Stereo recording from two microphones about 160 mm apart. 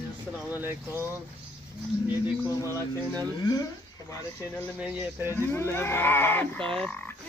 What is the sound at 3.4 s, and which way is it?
Speech, 25° left (ahead or behind).